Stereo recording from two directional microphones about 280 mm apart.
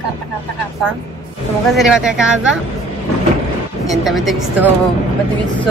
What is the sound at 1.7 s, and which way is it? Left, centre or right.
Speech, centre.